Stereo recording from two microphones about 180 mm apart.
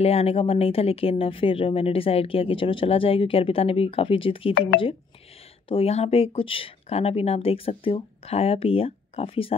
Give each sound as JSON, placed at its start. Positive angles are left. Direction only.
{"t": 0.0, "sound": "speech", "side_deg": 35}
{"t": 5.7, "sound": "speech", "side_deg": 35}